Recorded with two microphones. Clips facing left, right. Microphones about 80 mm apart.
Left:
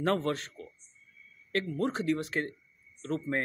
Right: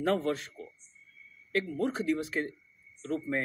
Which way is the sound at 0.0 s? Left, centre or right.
Left.